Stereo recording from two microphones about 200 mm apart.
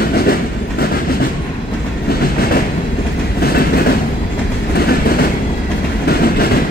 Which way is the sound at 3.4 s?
50° left (ahead or behind).